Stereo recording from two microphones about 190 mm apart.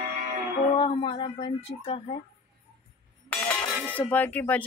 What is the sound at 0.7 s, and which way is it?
Speech, 30° left (ahead or behind).